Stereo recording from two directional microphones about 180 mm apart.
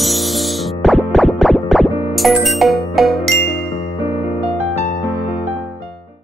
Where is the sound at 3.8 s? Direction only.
35° left (ahead or behind).